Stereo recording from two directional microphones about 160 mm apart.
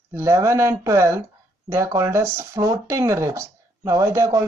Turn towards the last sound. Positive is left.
turn(degrees=-20)  # may be behind; listen again after turning